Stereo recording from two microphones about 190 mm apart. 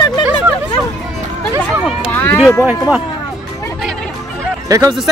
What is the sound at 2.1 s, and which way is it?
Run, 10° left (ahead or behind).